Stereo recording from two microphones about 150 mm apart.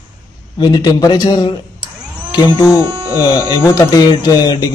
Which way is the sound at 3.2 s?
20° left (ahead or behind).